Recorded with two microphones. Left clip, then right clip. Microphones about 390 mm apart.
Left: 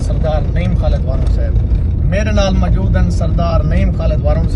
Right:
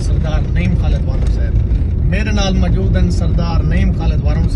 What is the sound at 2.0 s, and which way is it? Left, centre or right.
Speech, centre.